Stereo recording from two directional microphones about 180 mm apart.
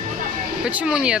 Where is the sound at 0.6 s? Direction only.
5° right (ahead or behind).